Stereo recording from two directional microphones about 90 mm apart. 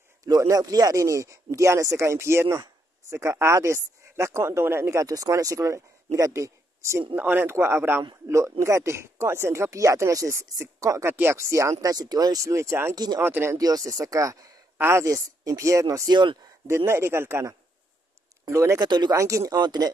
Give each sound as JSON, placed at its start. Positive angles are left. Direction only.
{"t": 0.2, "sound": "speech", "side_deg": -40}
{"t": 5.0, "sound": "a man's voice", "side_deg": -40}
{"t": 7.2, "sound": "speech", "side_deg": -20}
{"t": 12.9, "sound": "speech", "side_deg": -50}
{"t": 13.2, "sound": "speech", "side_deg": -25}
{"t": 13.6, "sound": "speech", "side_deg": -40}
{"t": 14.8, "sound": "speech", "side_deg": -30}
{"t": 16.1, "sound": "speech", "side_deg": -60}
{"t": 16.6, "sound": "speech", "side_deg": -30}
{"t": 18.8, "sound": "speech", "side_deg": -55}
{"t": 19.1, "sound": "speech", "side_deg": -35}